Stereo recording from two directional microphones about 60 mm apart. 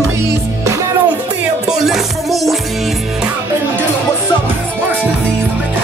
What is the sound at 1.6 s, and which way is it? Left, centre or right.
Music, centre.